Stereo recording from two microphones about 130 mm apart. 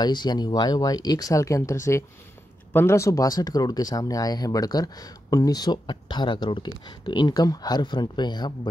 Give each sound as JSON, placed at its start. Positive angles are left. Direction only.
{"t": 0.0, "sound": "speech", "side_deg": 35}